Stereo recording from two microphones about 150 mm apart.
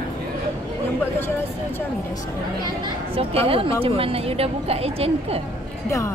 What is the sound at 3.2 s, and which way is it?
A woman's voice, 40° right (ahead or behind).